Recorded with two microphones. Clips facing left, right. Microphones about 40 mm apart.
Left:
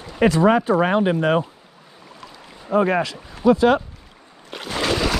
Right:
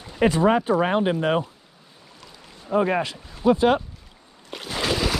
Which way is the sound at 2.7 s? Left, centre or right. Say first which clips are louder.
Left 3 dB; left.